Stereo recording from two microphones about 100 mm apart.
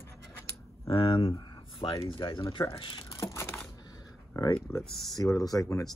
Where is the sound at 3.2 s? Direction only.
30° left (ahead or behind).